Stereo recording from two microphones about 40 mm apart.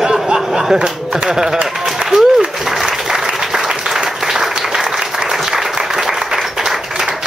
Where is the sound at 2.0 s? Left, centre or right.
Centre.